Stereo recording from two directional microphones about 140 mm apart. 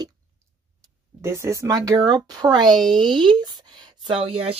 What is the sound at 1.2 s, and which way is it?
Speech, 20° right (ahead or behind).